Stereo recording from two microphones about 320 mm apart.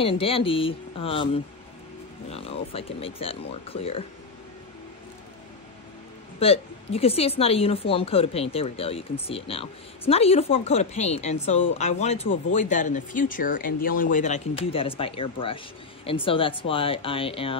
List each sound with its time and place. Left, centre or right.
0.0 s a woman's voice: centre
6.4 s a woman's voice: centre